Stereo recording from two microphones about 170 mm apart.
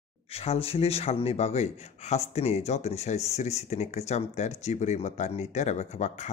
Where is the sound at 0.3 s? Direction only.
35° left (ahead or behind).